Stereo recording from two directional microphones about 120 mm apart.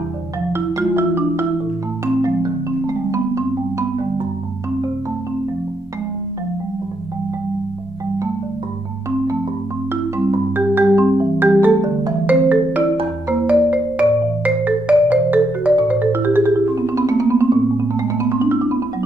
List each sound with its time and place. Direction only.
0.5 s music: 20° right (ahead or behind)
2.9 s music: 25° right (ahead or behind)
10.1 s music: 15° right (ahead or behind)
11.3 s marimba: 15° right (ahead or behind)
12.3 s music: 15° right (ahead or behind)